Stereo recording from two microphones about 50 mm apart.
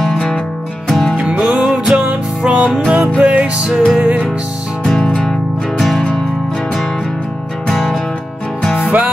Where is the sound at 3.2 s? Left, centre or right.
Centre.